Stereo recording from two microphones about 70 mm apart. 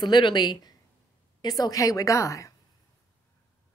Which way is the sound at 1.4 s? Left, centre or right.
Left.